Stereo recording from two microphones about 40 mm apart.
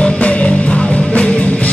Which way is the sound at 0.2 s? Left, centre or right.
Left.